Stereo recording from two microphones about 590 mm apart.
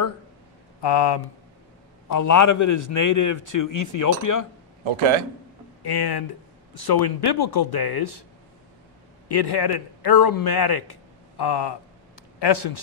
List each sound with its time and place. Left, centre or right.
0.8 s speech: left
2.0 s a man's voice: left
4.8 s a man's voice: right
5.8 s a man's voice: left
9.3 s a man's voice: left